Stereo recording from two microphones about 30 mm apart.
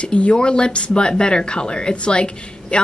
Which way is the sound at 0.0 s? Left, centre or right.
Left.